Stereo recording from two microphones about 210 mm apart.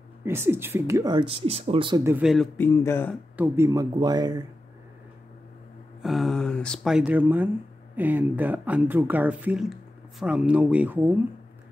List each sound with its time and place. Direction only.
0.2 s speech: 10° right (ahead or behind)
2.0 s speech: 5° right (ahead or behind)
2.5 s speech: 10° left (ahead or behind)
3.3 s speech: 15° right (ahead or behind)
6.0 s speech: centre (ahead or behind)